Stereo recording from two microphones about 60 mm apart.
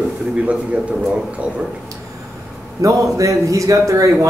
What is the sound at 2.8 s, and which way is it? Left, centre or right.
A man's voice, right.